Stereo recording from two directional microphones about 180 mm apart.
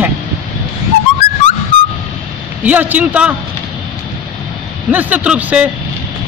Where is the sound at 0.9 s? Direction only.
90° left.